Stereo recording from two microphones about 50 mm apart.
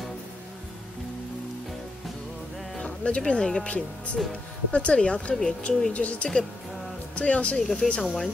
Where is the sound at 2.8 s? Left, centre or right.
Left.